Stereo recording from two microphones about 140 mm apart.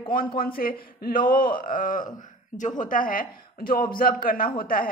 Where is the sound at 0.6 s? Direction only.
90° left.